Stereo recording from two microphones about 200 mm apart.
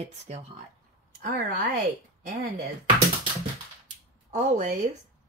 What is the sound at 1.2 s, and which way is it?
Speech, 50° right (ahead or behind).